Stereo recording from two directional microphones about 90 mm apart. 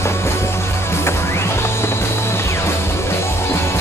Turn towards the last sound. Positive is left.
turn(degrees=30)  # may be behind; listen again after turning